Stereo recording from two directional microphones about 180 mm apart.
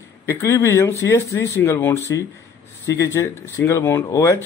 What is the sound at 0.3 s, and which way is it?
Speech, 15° left (ahead or behind).